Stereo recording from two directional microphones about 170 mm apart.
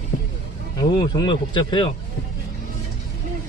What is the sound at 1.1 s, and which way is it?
Speech, 25° left (ahead or behind).